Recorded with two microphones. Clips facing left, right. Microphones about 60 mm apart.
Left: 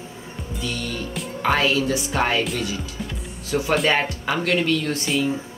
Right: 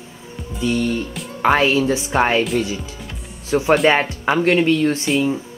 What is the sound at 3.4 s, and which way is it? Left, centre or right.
Speech, right.